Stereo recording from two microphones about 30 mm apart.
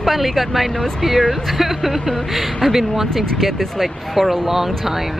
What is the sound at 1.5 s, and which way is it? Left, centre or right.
Speech, centre.